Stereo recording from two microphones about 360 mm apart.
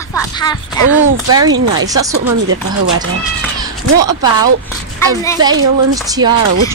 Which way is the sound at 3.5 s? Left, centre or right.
Centre.